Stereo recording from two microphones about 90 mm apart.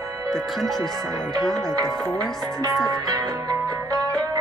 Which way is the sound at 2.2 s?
45° right (ahead or behind).